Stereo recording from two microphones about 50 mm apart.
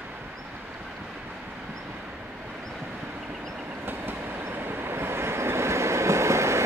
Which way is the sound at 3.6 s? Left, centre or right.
Right.